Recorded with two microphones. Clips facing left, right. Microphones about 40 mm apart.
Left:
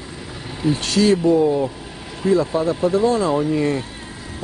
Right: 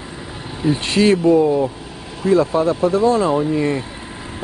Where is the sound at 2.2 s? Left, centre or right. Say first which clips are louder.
Right 2 dB; left.